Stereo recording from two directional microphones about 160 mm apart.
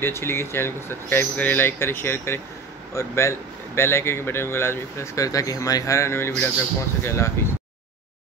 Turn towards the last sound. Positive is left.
turn(degrees=15)  # may be behind; listen again after turning